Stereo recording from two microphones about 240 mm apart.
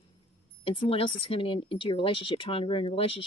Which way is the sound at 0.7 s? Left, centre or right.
Left.